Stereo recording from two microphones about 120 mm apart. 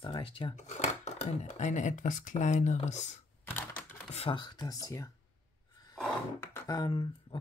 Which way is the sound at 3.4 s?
15° left (ahead or behind).